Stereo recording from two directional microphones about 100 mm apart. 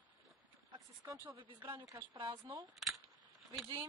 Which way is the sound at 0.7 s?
35° right (ahead or behind).